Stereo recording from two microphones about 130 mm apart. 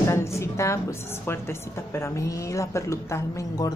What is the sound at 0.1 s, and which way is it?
A woman's voice, 20° left (ahead or behind).